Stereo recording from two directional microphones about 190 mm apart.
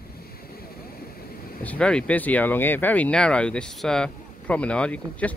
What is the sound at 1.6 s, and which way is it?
Speech, 5° left (ahead or behind).